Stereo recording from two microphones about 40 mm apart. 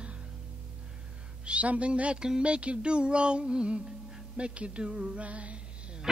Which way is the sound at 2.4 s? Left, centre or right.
Right.